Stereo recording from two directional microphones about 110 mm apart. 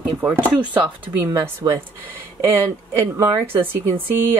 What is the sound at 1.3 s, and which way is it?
Speech, 30° right (ahead or behind).